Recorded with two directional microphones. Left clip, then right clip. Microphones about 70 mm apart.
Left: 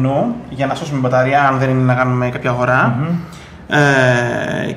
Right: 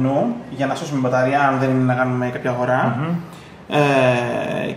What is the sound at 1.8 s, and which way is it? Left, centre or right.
Speech, left.